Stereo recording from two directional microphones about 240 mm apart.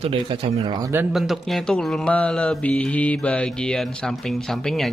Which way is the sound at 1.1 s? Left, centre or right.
Centre.